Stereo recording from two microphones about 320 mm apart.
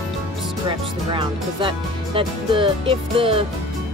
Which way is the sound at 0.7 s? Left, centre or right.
Centre.